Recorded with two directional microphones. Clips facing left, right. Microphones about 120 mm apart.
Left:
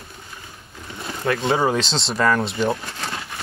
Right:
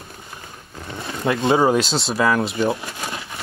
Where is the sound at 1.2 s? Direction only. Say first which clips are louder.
Right 3 dB; 20° right (ahead or behind).